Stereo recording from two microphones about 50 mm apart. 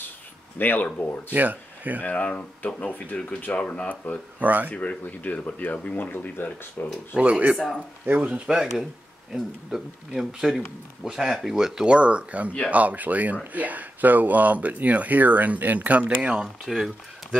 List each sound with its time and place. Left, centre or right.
0.6 s speech: left
1.3 s speech: right
2.0 s speech: left
4.4 s speech: right
4.7 s speech: left
7.2 s speech: right
7.5 s speech: centre
8.0 s speech: right
8.5 s speech: centre
16.6 s speech: centre